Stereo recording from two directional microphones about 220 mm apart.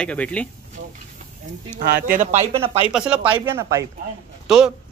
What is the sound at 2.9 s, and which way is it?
Speech, 5° right (ahead or behind).